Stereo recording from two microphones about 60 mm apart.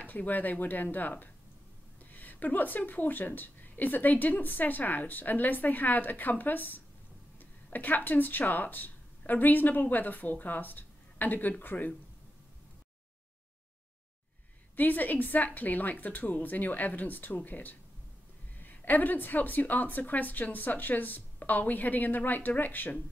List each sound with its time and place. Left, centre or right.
0.0 s a woman's voice: left
14.8 s a woman's voice: left